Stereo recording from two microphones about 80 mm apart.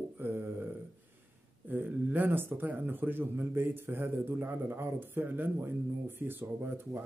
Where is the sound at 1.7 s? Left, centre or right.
Right.